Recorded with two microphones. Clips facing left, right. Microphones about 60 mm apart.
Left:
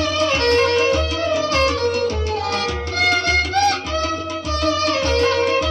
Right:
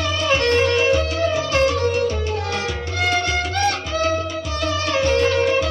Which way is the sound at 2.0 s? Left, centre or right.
Right.